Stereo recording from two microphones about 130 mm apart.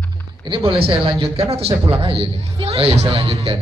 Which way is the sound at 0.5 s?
45° right (ahead or behind).